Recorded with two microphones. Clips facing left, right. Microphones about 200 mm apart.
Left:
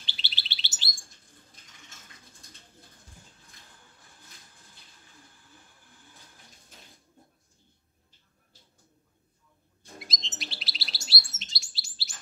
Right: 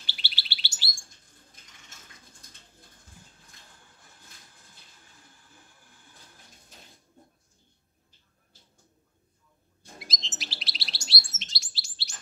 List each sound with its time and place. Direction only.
0.1 s bird: 20° left (ahead or behind)
10.0 s chirp: centre (ahead or behind)